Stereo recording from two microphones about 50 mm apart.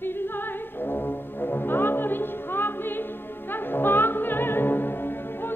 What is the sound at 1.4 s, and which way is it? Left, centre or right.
Music, left.